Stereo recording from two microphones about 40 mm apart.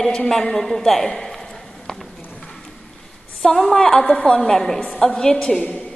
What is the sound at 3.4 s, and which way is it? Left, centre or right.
Speech, centre.